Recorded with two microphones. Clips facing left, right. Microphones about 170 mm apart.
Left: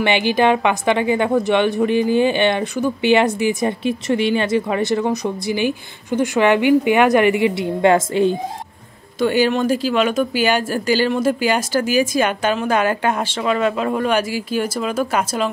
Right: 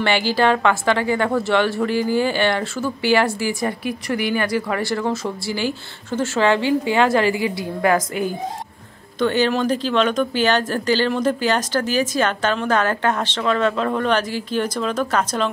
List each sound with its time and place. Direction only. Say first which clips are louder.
0.0 s a woman's voice: left 2 dB; 20° left (ahead or behind)
9.2 s speech: left 2 dB; 10° left (ahead or behind)